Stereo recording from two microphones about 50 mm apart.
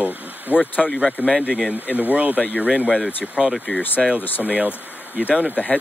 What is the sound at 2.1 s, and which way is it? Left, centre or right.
Speech, right.